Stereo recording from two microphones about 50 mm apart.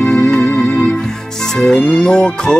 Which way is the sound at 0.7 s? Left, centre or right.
Left.